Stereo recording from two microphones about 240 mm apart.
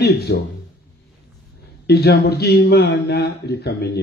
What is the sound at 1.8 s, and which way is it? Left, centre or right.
A man's voice, left.